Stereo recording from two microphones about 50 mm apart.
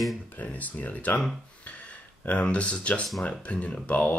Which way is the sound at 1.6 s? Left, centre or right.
Left.